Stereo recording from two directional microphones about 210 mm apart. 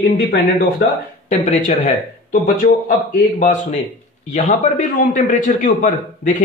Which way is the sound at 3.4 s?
35° left (ahead or behind).